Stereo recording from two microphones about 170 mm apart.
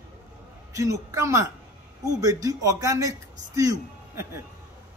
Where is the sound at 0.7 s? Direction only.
20° right (ahead or behind).